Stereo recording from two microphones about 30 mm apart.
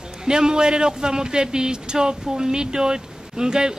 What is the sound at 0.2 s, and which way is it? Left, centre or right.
Speech, right.